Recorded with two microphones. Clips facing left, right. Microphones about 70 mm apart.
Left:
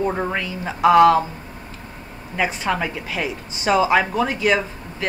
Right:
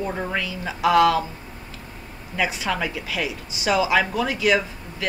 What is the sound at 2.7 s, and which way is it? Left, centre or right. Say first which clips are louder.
Speech: left 2 dB; left.